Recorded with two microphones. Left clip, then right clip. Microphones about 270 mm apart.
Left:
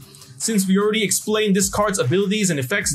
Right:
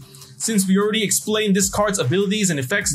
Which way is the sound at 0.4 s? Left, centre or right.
Centre.